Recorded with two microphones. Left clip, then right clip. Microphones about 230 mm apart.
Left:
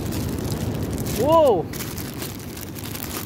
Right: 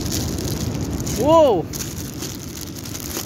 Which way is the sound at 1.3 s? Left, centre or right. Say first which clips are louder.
Right 2 dB; centre.